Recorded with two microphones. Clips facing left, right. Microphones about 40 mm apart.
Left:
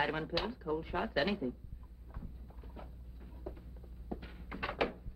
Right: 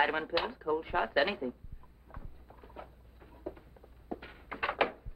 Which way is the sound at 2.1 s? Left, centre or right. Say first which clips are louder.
Right 1 dB; centre.